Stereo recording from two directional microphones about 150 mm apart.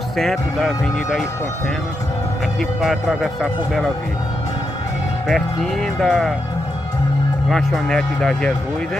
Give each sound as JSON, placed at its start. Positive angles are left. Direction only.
{"t": 0.2, "sound": "speech", "side_deg": 0}
{"t": 2.8, "sound": "speech", "side_deg": 0}
{"t": 5.3, "sound": "speech", "side_deg": 5}
{"t": 7.4, "sound": "speech", "side_deg": 5}